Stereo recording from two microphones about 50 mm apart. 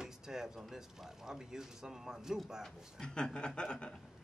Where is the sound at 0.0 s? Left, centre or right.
Centre.